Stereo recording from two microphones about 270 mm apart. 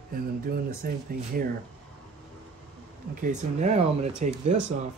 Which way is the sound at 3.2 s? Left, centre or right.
Right.